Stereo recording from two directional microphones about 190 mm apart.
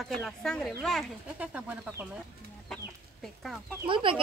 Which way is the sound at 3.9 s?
25° right (ahead or behind).